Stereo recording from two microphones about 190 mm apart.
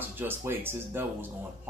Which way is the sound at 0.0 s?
10° right (ahead or behind).